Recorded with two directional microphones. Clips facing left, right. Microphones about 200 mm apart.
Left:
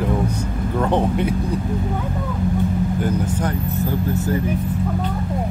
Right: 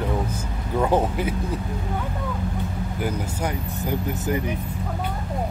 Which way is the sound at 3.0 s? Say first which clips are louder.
Left 5 dB; 10° right (ahead or behind).